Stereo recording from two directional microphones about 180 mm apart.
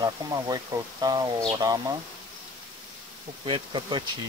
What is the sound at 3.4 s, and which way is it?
Speech, 30° right (ahead or behind).